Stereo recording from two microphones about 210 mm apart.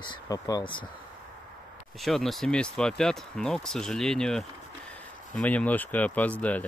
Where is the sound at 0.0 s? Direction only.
20° left (ahead or behind).